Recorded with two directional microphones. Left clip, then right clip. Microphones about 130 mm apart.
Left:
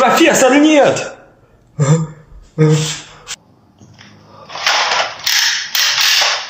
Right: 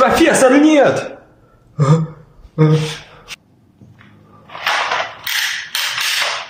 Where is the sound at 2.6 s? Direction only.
20° right (ahead or behind).